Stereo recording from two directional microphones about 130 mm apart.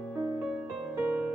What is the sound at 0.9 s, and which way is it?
Piano, 10° right (ahead or behind).